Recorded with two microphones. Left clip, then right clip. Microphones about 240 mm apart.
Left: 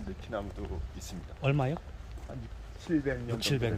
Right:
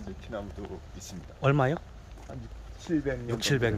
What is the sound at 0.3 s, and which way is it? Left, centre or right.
Speech, centre.